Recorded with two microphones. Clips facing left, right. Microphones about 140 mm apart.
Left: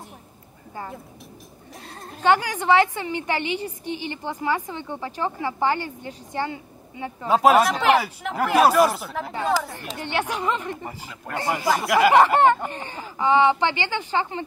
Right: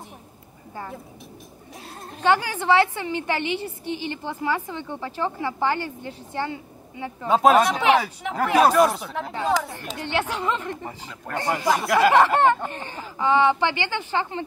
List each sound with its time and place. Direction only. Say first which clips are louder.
2.2 s a woman's voice: left 1 dB; 15° left (ahead or behind)
7.2 s speech: even; 5° left (ahead or behind)
9.9 s a woman's voice: even; 15° left (ahead or behind)
12.1 s a woman's voice: left 2 dB; 15° left (ahead or behind)